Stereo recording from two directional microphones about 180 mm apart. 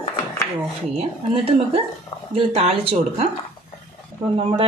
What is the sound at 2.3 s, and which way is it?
Speech, 30° right (ahead or behind).